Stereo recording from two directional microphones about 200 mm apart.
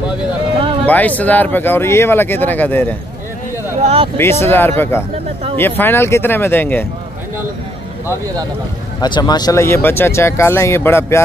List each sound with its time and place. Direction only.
0.8 s speech: 10° left (ahead or behind)
3.8 s speech: 30° right (ahead or behind)
4.2 s speech: 10° left (ahead or behind)
9.0 s speech: 20° left (ahead or behind)